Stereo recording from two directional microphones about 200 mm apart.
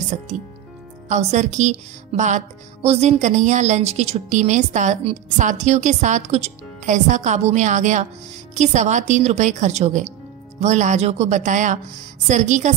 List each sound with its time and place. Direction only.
0.1 s speech: 35° right (ahead or behind)